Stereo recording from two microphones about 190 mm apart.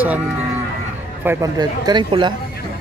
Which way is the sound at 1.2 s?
20° right (ahead or behind).